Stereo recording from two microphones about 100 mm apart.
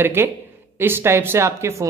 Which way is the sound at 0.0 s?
25° right (ahead or behind).